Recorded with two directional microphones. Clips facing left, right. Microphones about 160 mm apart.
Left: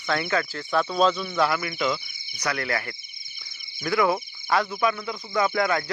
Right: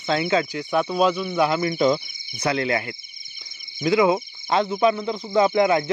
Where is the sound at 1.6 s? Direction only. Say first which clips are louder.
Right 7 dB; 35° right (ahead or behind).